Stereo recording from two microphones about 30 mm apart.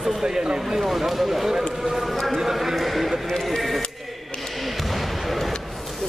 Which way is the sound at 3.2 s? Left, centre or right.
Centre.